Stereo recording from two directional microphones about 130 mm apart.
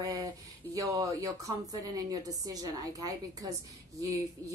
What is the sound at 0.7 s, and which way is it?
Speech, 25° right (ahead or behind).